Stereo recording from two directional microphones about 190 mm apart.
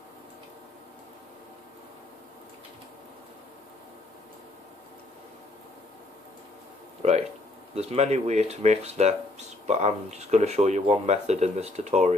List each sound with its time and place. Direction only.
7.7 s speech: 35° right (ahead or behind)